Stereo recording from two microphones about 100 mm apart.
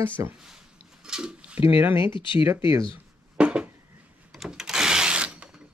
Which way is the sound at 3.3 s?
10° right (ahead or behind).